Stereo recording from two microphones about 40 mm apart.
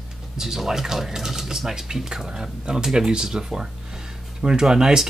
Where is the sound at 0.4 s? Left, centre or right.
Centre.